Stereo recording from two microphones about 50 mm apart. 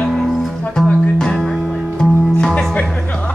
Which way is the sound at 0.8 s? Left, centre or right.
Centre.